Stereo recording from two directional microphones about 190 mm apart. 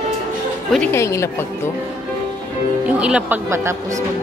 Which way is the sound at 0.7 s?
10° left (ahead or behind).